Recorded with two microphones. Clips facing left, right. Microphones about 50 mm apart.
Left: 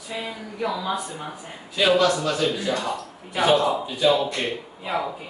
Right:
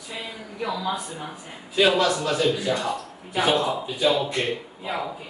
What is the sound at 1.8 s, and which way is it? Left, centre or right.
A man's voice, centre.